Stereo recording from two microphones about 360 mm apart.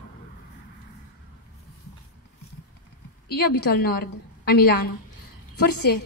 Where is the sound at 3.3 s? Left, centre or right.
Left.